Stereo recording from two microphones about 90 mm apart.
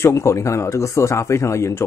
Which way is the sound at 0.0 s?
30° left (ahead or behind).